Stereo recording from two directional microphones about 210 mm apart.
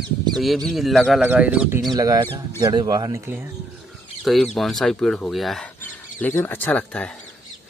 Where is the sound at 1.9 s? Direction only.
20° right (ahead or behind).